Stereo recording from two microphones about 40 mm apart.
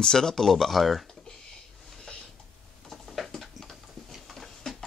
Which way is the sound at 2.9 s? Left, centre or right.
Centre.